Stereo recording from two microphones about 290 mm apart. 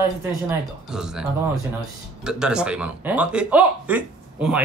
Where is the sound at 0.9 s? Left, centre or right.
Centre.